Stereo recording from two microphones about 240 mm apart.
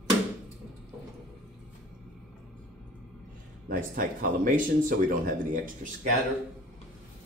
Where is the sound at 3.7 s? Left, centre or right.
Right.